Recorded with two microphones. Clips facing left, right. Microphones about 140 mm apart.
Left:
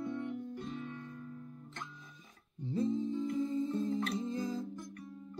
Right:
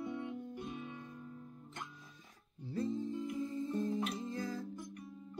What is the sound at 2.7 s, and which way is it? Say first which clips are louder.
Music: left 4 dB; 20° left (ahead or behind).